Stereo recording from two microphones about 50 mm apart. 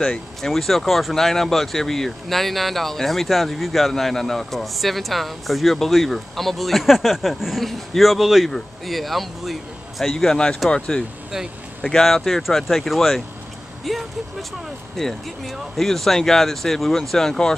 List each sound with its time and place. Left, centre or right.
0.4 s speech: centre
10.1 s speech: centre
11.8 s speech: centre